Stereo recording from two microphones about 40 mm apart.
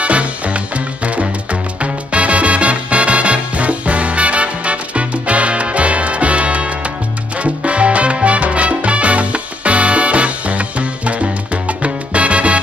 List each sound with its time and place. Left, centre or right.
0.0 s music: right
7.3 s salsa music: right